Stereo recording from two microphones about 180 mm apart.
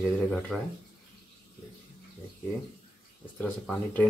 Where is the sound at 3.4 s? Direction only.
10° left (ahead or behind).